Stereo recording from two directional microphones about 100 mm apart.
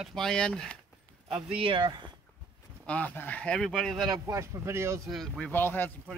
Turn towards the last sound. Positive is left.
turn(degrees=20)  # may be behind; listen again after turning